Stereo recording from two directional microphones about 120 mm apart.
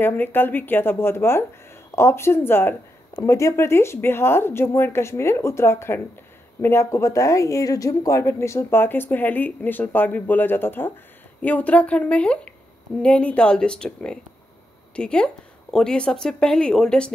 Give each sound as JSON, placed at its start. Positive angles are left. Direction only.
{"t": 0.0, "sound": "a woman's voice", "side_deg": 15}